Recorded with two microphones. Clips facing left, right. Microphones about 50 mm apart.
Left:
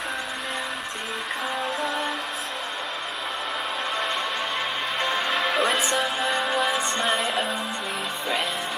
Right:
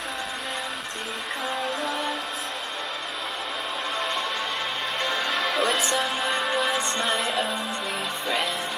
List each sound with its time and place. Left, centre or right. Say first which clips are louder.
1.8 s music: left 1 dB; centre
5.0 s music: left 1 dB; centre
5.3 s music: left 2 dB; centre
5.6 s music: even; centre
5.9 s music: left 1 dB; centre